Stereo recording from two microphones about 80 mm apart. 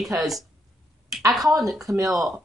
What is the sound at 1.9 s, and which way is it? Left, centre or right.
Speech, right.